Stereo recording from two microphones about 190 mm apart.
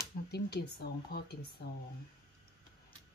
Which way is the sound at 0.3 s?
60° left (ahead or behind).